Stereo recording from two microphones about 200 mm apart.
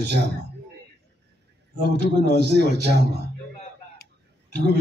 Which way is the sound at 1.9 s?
55° right (ahead or behind).